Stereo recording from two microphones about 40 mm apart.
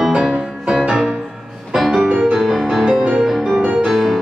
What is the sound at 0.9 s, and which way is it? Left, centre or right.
Music, right.